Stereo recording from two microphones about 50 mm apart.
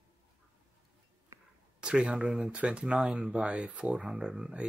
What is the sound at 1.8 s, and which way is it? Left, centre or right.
Speech, centre.